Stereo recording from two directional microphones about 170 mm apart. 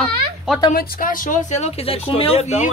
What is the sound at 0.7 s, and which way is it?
Speech, 55° left (ahead or behind).